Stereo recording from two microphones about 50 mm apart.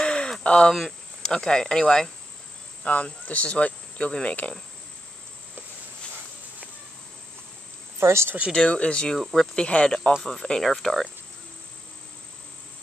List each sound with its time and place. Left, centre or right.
0.0 s a sound: centre
1.2 s speech: centre
2.8 s speech: left
8.0 s speech: right
8.5 s speech: left
9.2 s speech: centre
9.6 s speech: left